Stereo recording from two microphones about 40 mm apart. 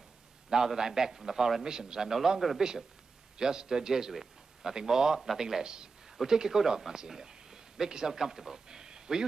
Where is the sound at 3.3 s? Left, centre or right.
Centre.